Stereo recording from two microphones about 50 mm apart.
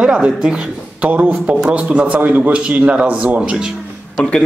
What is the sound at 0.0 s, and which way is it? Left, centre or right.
Speech, centre.